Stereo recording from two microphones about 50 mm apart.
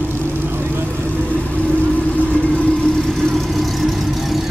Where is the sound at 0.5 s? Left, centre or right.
Right.